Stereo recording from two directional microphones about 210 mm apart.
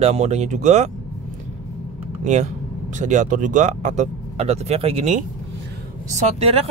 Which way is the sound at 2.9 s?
35° right (ahead or behind).